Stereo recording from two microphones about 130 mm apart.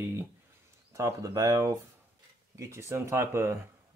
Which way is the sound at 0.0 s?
20° right (ahead or behind).